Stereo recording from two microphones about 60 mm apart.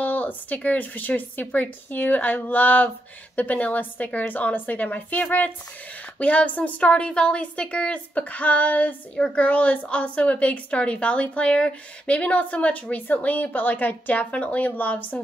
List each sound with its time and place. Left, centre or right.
0.0 s a woman's voice: left
9.1 s a woman's voice: centre